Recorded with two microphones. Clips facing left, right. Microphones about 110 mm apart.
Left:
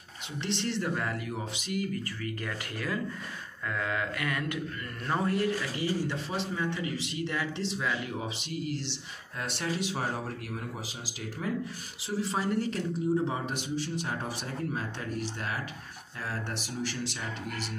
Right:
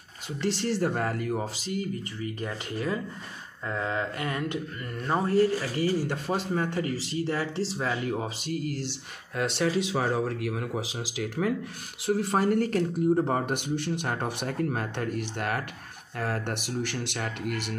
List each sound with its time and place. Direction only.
0.4 s speech: 40° right (ahead or behind)
3.6 s a sound: 30° right (ahead or behind)
5.0 s speech: 25° right (ahead or behind)
6.0 s speech: 50° right (ahead or behind)
9.4 s speech: 90° right
12.1 s speech: 55° right (ahead or behind)